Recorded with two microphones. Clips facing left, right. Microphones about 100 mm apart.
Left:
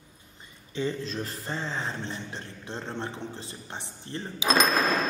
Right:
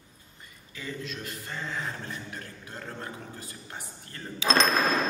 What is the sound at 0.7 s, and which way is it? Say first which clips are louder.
Speech: left 7 dB; 30° left (ahead or behind).